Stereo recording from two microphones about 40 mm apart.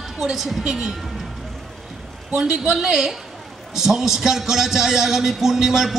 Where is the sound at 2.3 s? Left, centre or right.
Centre.